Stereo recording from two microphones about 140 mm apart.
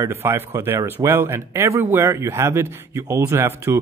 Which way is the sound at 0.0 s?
20° right (ahead or behind).